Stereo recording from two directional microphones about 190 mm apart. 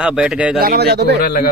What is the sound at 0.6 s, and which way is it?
Speech, 55° right (ahead or behind).